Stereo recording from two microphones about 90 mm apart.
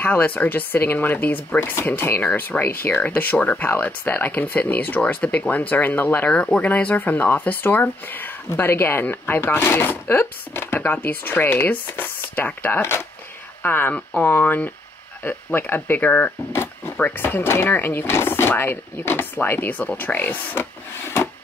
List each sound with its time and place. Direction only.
0.0 s speech: 20° left (ahead or behind)